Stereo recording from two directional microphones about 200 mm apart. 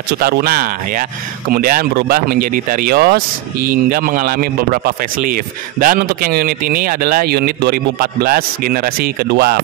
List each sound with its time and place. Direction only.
0.2 s speech: 50° right (ahead or behind)